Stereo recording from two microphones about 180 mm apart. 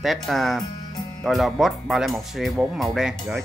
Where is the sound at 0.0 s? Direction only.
Centre (ahead or behind).